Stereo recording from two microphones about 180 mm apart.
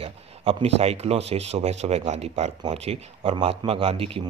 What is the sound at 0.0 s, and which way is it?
Speech, 30° right (ahead or behind).